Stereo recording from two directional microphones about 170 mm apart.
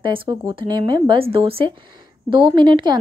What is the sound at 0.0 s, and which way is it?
Speech, 30° right (ahead or behind).